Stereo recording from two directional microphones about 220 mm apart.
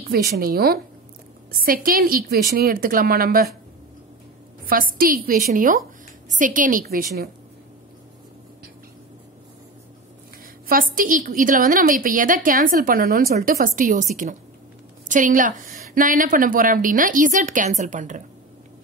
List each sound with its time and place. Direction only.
0.0 s a woman's voice: 45° right (ahead or behind)
4.6 s a woman's voice: 40° right (ahead or behind)
10.7 s a woman's voice: 40° right (ahead or behind)